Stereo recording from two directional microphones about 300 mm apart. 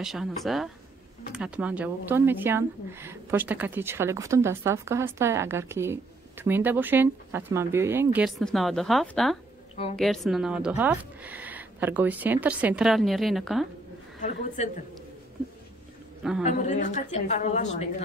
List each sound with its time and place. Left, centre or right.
0.0 s speech: centre
14.6 s a woman's voice: left
16.4 s a woman's voice: left